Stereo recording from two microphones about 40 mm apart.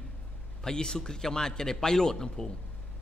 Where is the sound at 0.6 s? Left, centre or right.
Centre.